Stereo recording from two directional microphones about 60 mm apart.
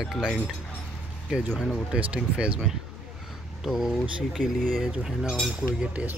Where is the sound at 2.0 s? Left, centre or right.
Centre.